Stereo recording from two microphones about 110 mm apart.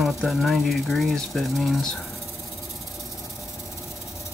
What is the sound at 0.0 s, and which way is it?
Speech, centre (ahead or behind).